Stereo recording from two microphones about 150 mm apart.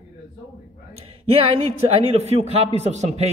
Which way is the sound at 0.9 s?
40° right (ahead or behind).